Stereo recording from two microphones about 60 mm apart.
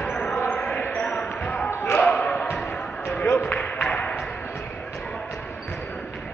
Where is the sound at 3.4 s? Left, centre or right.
Left.